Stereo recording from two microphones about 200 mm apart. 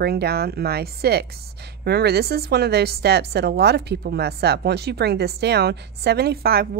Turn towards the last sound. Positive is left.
turn(degrees=-50)  # may be behind; listen again after turning